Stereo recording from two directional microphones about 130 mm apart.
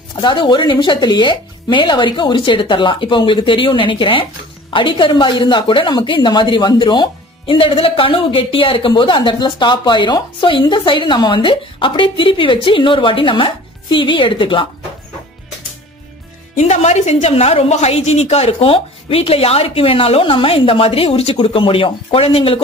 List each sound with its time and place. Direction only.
0.1 s speech: 35° left (ahead or behind)
16.5 s a woman's voice: 60° left (ahead or behind)